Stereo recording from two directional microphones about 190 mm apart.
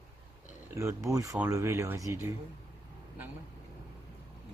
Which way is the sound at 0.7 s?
15° right (ahead or behind).